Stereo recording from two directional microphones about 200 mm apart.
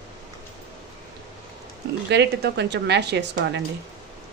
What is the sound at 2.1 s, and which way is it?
Speech, 60° right (ahead or behind).